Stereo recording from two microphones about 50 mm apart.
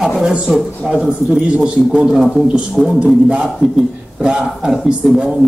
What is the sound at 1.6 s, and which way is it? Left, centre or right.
Speech, centre.